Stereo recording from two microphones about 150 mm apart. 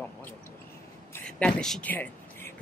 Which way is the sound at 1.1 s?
10° left (ahead or behind).